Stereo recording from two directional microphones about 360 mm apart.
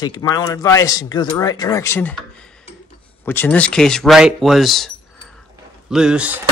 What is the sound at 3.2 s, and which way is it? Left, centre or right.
Speech, centre.